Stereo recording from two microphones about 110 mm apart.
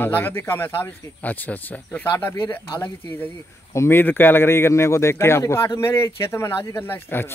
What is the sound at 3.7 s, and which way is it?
Speech, 20° left (ahead or behind).